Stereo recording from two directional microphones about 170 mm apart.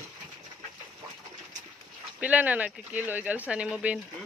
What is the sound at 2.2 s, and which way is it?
Speech, 10° right (ahead or behind).